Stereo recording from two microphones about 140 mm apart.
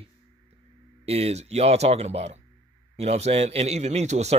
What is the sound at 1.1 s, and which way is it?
A man's voice, 50° right (ahead or behind).